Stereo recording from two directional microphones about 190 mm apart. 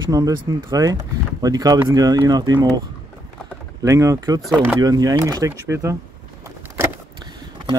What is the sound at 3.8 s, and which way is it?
Speech, 15° right (ahead or behind).